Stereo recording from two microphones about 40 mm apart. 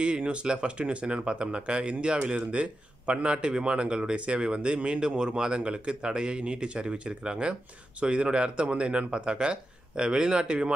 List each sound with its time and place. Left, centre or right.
0.0 s speech: right